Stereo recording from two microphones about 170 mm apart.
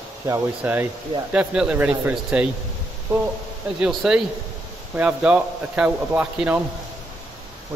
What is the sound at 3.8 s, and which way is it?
Speech, 5° right (ahead or behind).